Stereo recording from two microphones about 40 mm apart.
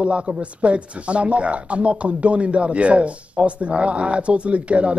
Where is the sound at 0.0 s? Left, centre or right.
Right.